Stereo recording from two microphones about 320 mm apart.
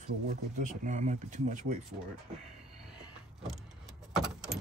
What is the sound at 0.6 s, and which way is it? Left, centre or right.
Speech, right.